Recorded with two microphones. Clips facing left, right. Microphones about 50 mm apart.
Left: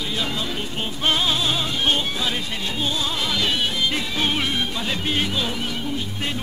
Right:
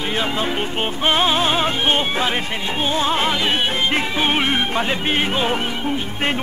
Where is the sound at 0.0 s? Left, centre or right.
Right.